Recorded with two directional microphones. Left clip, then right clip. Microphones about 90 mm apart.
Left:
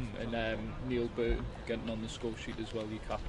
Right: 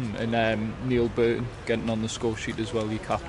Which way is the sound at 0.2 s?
90° right.